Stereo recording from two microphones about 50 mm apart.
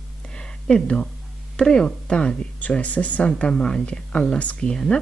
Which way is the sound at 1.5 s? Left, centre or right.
Centre.